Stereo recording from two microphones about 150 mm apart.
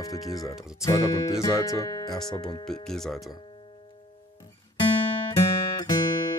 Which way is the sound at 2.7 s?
5° left (ahead or behind).